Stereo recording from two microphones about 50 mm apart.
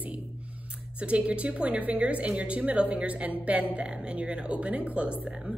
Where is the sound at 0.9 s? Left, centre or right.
Right.